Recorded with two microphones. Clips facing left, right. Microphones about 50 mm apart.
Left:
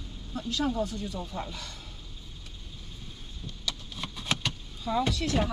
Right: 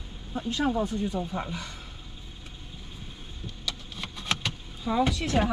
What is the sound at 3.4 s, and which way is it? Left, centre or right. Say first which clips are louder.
Vehicle: even; centre.